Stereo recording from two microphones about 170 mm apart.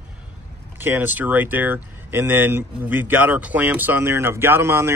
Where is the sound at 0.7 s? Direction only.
10° right (ahead or behind).